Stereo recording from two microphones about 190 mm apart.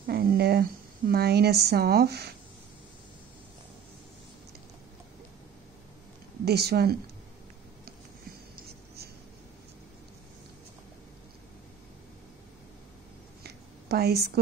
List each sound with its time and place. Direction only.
0.0 s speech: 55° right (ahead or behind)
6.4 s speech: 55° right (ahead or behind)
8.5 s writing: 55° right (ahead or behind)
13.4 s a sound: 60° right (ahead or behind)